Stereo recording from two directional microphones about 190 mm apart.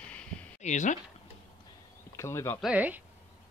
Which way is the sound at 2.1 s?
15° left (ahead or behind).